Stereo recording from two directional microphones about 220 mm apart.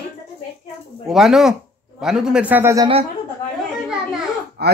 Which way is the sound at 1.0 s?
Centre (ahead or behind).